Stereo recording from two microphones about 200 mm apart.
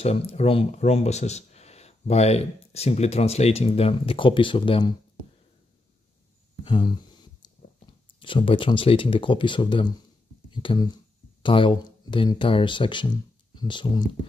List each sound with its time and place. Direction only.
0.0 s speech: 30° left (ahead or behind)
6.6 s speech: 25° left (ahead or behind)
8.2 s speech: 25° left (ahead or behind)